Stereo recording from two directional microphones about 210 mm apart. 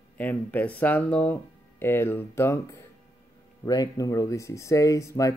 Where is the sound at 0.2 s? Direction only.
10° left (ahead or behind).